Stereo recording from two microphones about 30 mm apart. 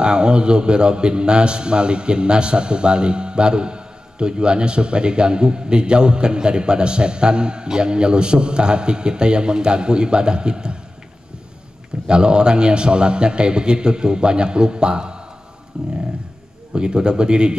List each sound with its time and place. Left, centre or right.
0.0 s a man's voice: right
12.1 s a man's voice: right